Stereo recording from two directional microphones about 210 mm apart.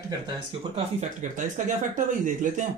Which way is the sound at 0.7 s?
35° right (ahead or behind).